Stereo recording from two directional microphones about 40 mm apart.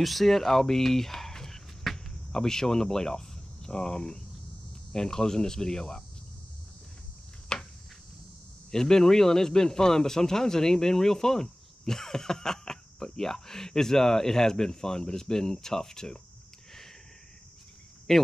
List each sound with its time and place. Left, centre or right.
0.0 s speech: centre
7.5 s insect: centre
8.7 s speech: centre
18.1 s speech: centre